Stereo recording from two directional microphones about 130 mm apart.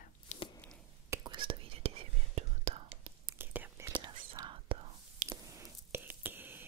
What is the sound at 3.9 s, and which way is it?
Whispering, 30° right (ahead or behind).